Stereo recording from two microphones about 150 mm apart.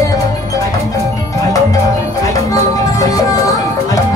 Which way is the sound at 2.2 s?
20° left (ahead or behind).